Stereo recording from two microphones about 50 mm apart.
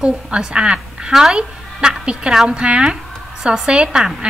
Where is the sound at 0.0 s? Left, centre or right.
Centre.